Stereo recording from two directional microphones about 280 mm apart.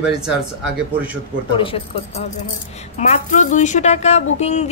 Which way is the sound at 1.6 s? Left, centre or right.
Centre.